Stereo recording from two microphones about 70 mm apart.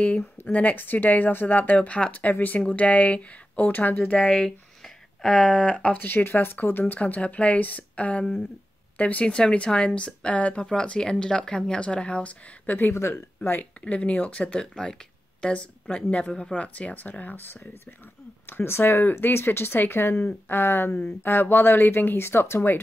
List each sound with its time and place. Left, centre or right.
0.5 s a woman's voice: left
4.2 s speech: centre
6.1 s speech: left
7.0 s a woman's voice: centre